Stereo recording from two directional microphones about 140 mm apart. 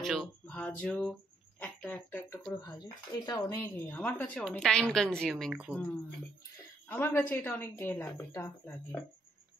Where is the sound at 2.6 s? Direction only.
30° left (ahead or behind).